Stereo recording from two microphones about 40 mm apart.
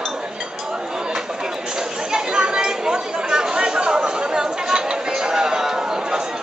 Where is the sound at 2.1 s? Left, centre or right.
Right.